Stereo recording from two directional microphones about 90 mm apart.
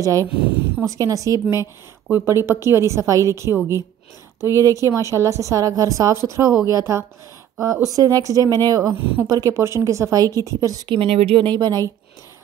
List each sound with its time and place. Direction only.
0.0 s a woman's voice: 40° right (ahead or behind)
2.0 s a woman's voice: 25° right (ahead or behind)
4.4 s speech: 35° left (ahead or behind)
4.9 s a woman's voice: 35° right (ahead or behind)
8.9 s a woman's voice: 20° right (ahead or behind)
9.3 s a woman's voice: 40° right (ahead or behind)
10.9 s speech: 85° right; by 11.9 s 50° right (ahead or behind)